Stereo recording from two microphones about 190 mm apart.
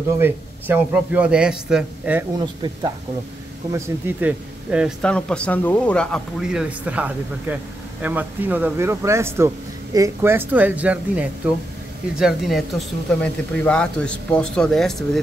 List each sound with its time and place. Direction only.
0.2 s a man's voice: 10° right (ahead or behind)
2.3 s speech: 20° right (ahead or behind)
3.7 s a man's voice: 10° right (ahead or behind)
5.0 s a man's voice: 5° left (ahead or behind)